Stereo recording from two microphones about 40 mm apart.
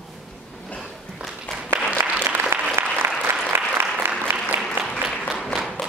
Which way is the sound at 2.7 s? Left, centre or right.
Right.